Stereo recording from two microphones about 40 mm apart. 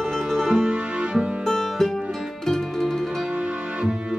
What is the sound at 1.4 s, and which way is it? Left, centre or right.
Music, centre.